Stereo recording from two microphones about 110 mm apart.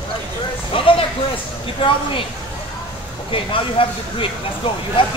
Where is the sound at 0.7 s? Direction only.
55° left (ahead or behind).